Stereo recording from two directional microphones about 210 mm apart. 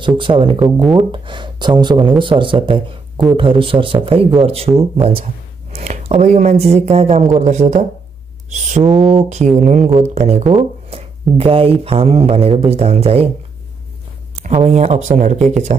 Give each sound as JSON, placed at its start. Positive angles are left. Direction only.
{"t": 0.2, "sound": "speech", "side_deg": -25}
{"t": 0.7, "sound": "speech", "side_deg": 0}
{"t": 1.1, "sound": "speech", "side_deg": -20}
{"t": 8.8, "sound": "speech", "side_deg": 0}
{"t": 9.6, "sound": "speech", "side_deg": -35}
{"t": 10.9, "sound": "a sound", "side_deg": -30}
{"t": 11.8, "sound": "speech", "side_deg": -30}
{"t": 14.3, "sound": "speech", "side_deg": -30}